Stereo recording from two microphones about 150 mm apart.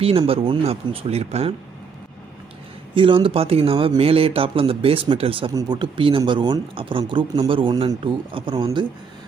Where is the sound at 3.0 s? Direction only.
35° right (ahead or behind).